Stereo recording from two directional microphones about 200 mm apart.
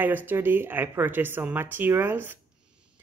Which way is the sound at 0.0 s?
10° right (ahead or behind).